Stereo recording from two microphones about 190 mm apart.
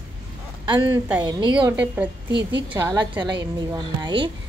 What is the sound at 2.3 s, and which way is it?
Speech, 65° right (ahead or behind).